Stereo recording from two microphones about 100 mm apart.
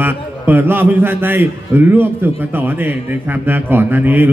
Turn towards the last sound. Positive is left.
turn(degrees=-20)  # may be behind; listen again after turning